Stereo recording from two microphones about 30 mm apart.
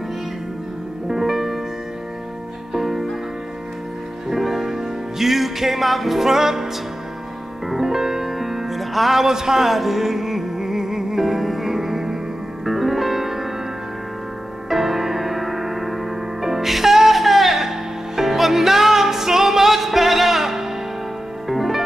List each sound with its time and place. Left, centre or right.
1.0 s music: centre
2.7 s music: centre
4.3 s music: centre
9.2 s a man's voice: centre
9.7 s music: centre
14.7 s music: centre